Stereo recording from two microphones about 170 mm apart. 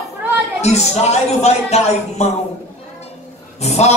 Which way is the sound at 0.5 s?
40° left (ahead or behind).